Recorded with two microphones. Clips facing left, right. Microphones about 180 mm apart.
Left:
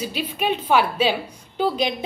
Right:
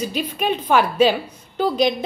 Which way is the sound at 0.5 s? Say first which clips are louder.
Right 1 dB; 10° left (ahead or behind).